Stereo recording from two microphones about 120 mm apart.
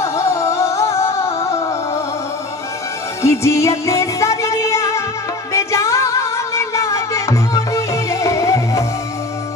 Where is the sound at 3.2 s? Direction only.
25° left (ahead or behind).